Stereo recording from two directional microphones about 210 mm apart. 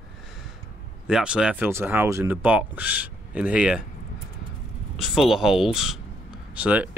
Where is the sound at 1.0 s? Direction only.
5° right (ahead or behind).